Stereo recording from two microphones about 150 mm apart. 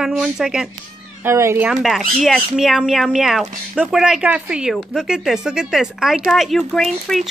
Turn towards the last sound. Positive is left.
turn(degrees=0)  # may be behind; listen again after turning